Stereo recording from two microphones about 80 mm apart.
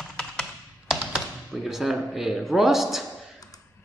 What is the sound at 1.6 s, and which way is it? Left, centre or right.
Speech, centre.